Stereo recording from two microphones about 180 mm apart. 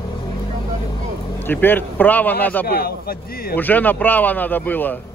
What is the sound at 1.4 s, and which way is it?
Speech, 10° left (ahead or behind).